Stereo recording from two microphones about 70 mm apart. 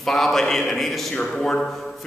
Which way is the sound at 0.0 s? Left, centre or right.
Centre.